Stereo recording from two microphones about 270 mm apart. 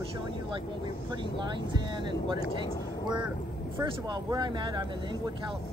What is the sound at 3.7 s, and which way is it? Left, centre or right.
Speech, centre.